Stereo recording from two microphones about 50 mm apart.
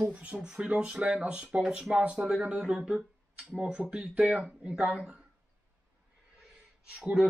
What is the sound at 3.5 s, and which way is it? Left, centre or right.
Speech, right.